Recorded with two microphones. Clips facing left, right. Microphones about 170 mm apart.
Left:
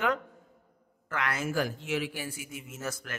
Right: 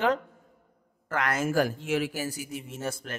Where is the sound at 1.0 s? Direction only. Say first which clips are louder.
Right 4 dB; 45° right (ahead or behind).